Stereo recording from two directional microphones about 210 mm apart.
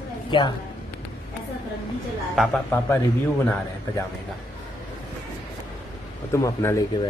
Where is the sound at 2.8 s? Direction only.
15° left (ahead or behind).